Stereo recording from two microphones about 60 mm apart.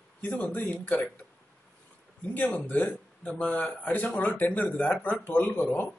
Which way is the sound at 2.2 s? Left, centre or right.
Left.